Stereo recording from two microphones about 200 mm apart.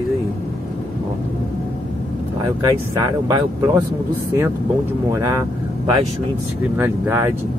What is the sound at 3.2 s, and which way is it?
Speech, 20° right (ahead or behind).